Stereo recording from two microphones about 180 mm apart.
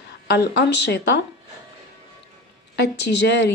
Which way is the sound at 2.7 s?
70° left (ahead or behind).